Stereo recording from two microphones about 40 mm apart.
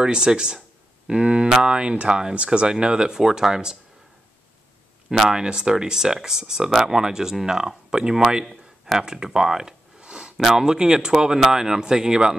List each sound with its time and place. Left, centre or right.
0.0 s speech: centre
5.2 s speech: right
9.9 s a sound: right
10.3 s speech: centre